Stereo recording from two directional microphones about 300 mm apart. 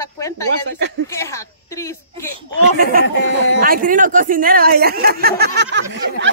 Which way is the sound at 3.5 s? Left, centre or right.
Right.